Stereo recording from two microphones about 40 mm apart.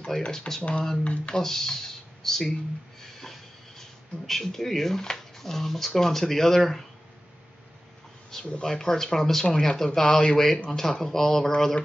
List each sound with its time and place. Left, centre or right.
0.1 s speech: centre
0.6 s speech: left
1.3 s speech: centre
3.0 s a sound: centre
4.3 s speech: centre
8.5 s speech: left
8.7 s speech: centre